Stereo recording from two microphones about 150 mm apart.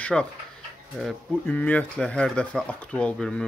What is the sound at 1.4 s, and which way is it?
Speech, 10° left (ahead or behind).